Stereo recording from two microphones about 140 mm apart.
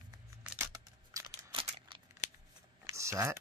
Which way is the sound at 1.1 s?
35° right (ahead or behind).